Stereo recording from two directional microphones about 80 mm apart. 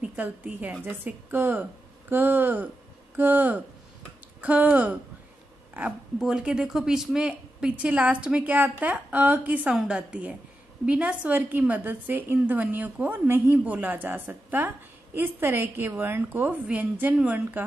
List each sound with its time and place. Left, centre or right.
0.0 s a woman's voice: centre
6.1 s a woman's voice: centre